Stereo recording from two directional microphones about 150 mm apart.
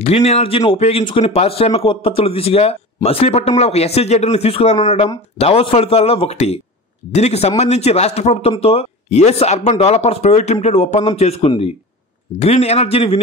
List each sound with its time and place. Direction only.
0.0 s speech: 45° left (ahead or behind)